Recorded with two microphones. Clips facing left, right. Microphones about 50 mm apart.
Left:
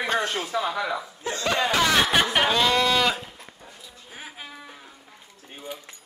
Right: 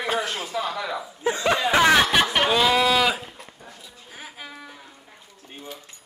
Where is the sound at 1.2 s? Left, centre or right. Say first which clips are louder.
Right 3 dB; centre.